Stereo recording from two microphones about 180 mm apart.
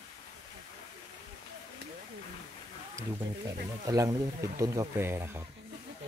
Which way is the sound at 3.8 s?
20° right (ahead or behind).